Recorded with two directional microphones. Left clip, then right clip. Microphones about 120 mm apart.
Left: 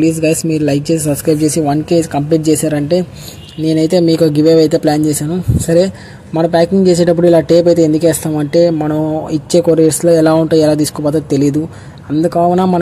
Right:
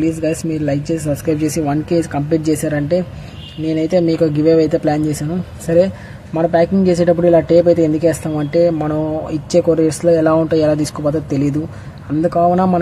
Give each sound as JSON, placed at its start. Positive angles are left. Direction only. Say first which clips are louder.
{"t": 0.0, "sound": "speech", "louder": "left 5 dB", "side_deg": 35}
{"t": 6.3, "sound": "speech", "louder": "left 3 dB", "side_deg": 30}